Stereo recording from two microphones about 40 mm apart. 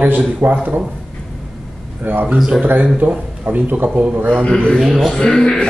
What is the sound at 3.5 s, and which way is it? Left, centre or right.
Speech, right.